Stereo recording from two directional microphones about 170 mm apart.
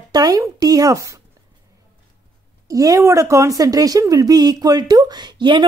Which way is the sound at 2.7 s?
20° right (ahead or behind).